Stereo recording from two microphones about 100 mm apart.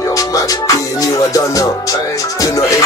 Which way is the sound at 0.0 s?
35° left (ahead or behind).